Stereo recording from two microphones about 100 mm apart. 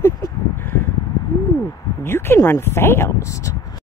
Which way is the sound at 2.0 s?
25° left (ahead or behind).